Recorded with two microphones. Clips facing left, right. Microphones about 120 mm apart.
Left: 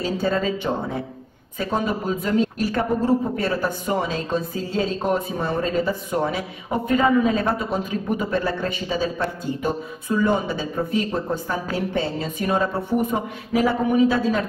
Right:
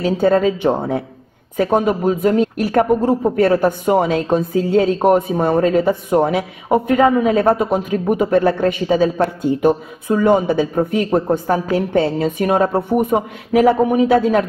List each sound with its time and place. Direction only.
0.0 s a man's voice: 55° right (ahead or behind)